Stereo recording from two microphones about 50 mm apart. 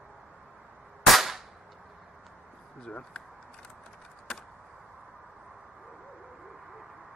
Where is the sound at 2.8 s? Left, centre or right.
Left.